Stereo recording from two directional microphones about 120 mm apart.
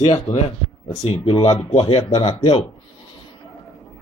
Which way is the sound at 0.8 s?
45° left (ahead or behind).